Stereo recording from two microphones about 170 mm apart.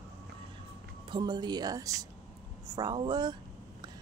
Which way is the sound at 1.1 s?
25° right (ahead or behind).